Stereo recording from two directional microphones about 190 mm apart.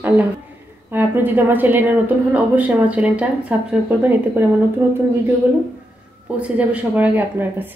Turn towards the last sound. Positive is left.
turn(degrees=-10)  # may be behind; listen again after turning